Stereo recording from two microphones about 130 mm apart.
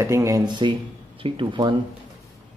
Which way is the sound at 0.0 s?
20° right (ahead or behind).